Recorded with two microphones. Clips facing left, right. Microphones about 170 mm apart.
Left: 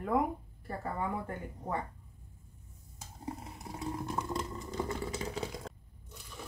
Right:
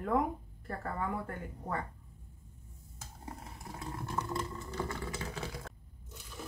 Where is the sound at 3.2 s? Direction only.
20° left (ahead or behind).